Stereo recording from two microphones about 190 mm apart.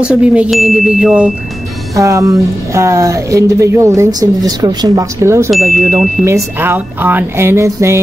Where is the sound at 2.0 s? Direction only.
15° right (ahead or behind).